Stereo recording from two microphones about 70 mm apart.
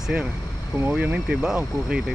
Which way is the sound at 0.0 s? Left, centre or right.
Centre.